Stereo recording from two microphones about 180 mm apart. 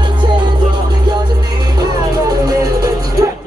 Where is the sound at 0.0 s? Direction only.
25° right (ahead or behind).